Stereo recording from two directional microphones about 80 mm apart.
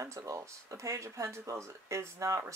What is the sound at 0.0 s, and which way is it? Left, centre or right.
Speech, right.